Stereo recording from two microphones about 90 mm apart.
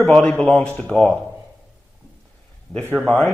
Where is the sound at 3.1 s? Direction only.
5° left (ahead or behind).